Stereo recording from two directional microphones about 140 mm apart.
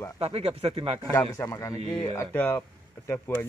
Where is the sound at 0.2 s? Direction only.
45° right (ahead or behind).